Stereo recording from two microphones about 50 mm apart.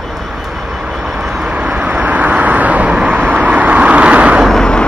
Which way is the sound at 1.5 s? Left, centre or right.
Right.